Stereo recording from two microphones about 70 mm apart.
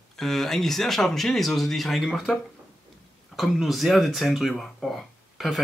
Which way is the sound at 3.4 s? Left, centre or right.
Centre.